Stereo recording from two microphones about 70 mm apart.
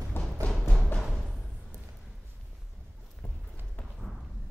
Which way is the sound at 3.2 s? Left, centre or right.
Left.